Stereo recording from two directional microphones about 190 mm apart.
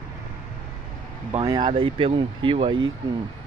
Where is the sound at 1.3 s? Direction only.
25° right (ahead or behind).